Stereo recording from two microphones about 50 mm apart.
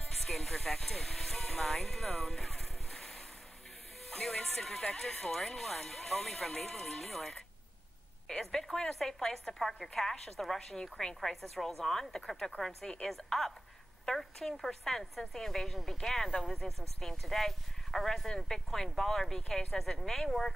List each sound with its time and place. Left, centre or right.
0.0 s speech: centre